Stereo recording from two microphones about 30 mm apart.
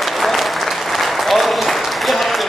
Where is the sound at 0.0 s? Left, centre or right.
Centre.